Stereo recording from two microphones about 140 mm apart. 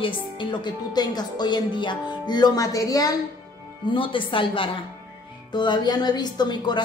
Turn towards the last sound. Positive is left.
turn(degrees=30)  # may be behind; listen again after turning